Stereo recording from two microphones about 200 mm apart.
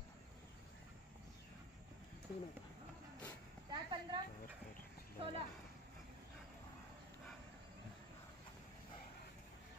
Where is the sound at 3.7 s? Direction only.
20° right (ahead or behind).